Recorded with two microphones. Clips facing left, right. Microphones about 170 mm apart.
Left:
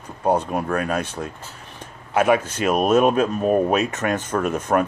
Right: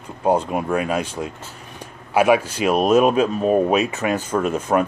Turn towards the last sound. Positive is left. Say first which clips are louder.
# right 1 dB
turn(degrees=-10)  # may be behind; listen again after turning